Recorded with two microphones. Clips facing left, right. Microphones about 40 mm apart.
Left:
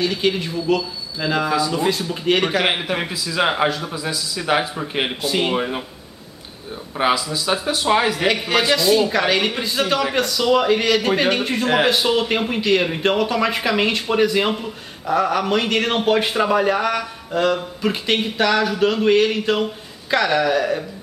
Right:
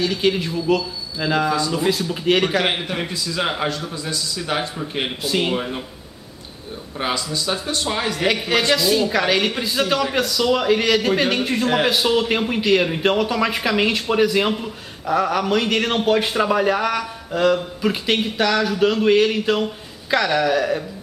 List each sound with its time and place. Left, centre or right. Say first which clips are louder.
0.0 s a man's voice: even; centre
7.0 s a man's voice: left 4 dB; centre